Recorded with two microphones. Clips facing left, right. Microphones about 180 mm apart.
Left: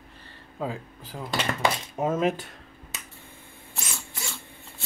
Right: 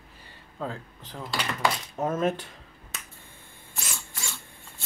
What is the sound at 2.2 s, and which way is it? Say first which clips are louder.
Speech: left 1 dB; 5° left (ahead or behind).